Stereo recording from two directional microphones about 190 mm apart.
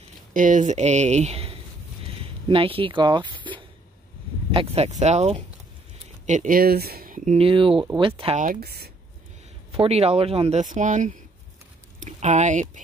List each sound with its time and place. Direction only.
0.3 s speech: 45° right (ahead or behind); by 8.4 s 25° right (ahead or behind)
8.4 s speech: 50° right (ahead or behind)
9.7 s speech: 30° right (ahead or behind)